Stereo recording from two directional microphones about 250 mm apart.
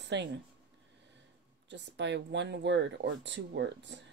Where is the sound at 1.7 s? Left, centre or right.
Right.